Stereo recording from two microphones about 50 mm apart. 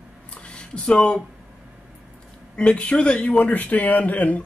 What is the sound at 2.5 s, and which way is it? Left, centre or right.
Speech, left.